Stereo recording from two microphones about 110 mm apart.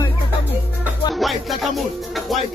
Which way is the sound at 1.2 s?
Centre (ahead or behind).